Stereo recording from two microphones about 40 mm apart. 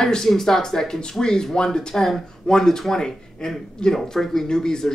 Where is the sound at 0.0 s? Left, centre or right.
Centre.